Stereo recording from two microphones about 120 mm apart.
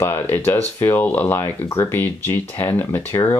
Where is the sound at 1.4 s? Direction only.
30° left (ahead or behind).